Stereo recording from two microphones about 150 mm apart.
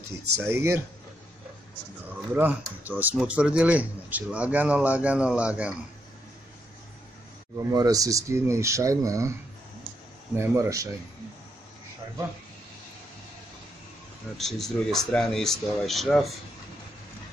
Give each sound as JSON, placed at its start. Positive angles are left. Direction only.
{"t": 0.5, "sound": "speech", "side_deg": -15}
{"t": 2.3, "sound": "speech", "side_deg": -10}
{"t": 7.5, "sound": "speech", "side_deg": -25}
{"t": 10.3, "sound": "speech", "side_deg": -20}
{"t": 14.3, "sound": "speech", "side_deg": 0}